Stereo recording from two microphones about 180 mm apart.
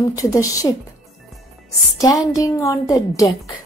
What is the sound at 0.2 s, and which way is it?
Speech, 20° left (ahead or behind).